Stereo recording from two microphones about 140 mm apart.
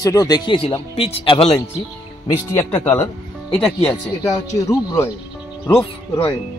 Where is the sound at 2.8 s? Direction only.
10° left (ahead or behind).